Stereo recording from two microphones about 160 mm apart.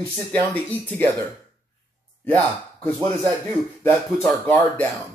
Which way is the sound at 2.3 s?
10° left (ahead or behind).